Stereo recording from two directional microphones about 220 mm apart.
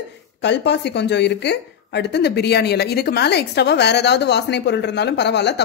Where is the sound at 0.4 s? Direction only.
50° left (ahead or behind).